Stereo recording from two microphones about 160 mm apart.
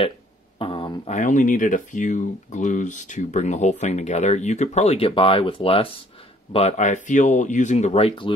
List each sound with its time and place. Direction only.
0.6 s a sound: 30° left (ahead or behind)
1.1 s speech: 50° left (ahead or behind); by 5.9 s 35° left (ahead or behind)
6.5 s speech: 45° left (ahead or behind)